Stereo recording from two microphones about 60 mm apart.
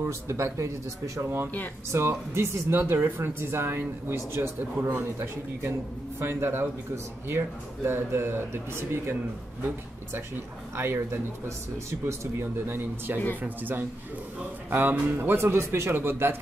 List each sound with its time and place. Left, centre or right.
0.0 s speech: right
1.9 s speech: right
10.8 s speech: right